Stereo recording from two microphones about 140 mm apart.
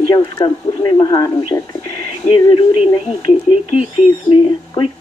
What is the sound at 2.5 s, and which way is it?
Speech, 45° left (ahead or behind).